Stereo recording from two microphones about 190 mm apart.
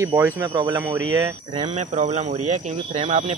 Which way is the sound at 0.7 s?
10° right (ahead or behind).